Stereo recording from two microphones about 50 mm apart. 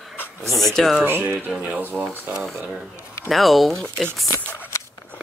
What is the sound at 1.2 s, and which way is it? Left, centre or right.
Speech, right.